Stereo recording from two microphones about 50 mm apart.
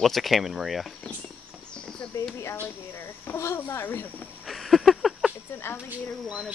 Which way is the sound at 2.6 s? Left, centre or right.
Left.